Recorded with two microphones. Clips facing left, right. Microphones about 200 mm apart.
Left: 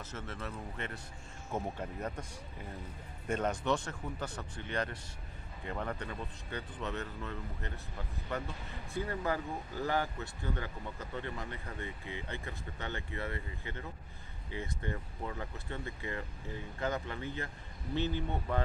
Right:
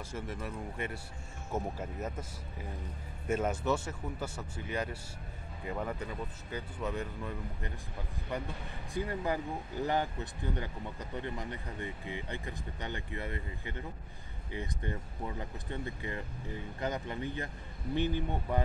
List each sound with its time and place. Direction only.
0.1 s speech: 10° right (ahead or behind)
3.3 s speech: 5° right (ahead or behind)